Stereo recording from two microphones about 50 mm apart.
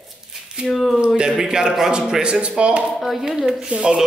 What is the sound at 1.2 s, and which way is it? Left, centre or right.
A man's voice, centre.